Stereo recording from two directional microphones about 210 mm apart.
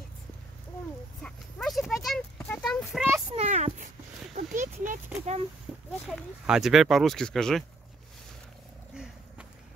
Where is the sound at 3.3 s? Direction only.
30° right (ahead or behind).